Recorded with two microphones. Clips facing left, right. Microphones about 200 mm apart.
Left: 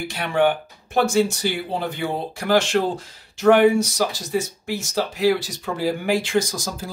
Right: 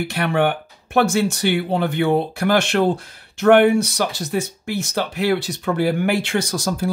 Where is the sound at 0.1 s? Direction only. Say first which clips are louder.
Left 1 dB; 60° right (ahead or behind).